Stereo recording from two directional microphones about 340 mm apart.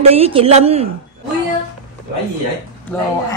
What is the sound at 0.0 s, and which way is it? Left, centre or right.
Speech, centre.